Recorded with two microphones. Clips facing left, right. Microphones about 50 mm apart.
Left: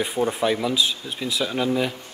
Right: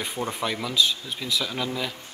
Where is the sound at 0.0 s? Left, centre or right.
Centre.